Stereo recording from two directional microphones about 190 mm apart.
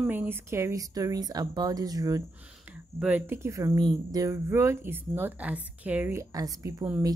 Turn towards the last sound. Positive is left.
turn(degrees=-15)  # may be behind; listen again after turning